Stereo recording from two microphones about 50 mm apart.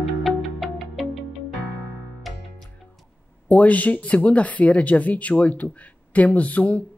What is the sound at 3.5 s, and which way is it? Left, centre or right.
Speech, left.